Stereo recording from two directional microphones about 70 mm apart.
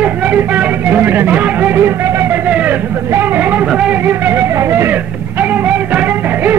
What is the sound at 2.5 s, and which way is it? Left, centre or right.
Hubbub, right.